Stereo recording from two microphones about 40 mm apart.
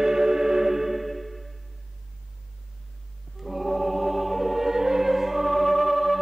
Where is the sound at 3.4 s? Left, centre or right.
Centre.